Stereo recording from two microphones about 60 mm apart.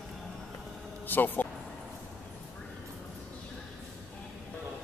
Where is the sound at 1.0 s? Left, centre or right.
Left.